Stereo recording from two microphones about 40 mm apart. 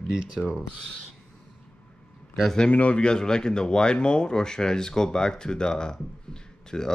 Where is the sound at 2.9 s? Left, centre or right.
Left.